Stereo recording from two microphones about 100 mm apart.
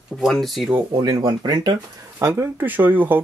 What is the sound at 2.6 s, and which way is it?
Speech, 20° right (ahead or behind).